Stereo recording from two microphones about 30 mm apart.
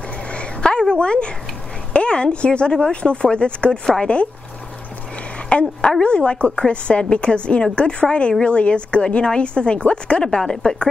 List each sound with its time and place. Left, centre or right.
0.3 s a sound: left
0.7 s a sound: left
2.0 s speech: left
3.8 s a woman's voice: left
5.5 s speech: left
10.4 s a woman's voice: left